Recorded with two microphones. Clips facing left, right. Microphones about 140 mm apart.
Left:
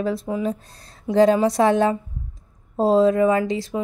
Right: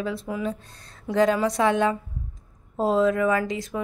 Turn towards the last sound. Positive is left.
turn(degrees=30)  # may be behind; listen again after turning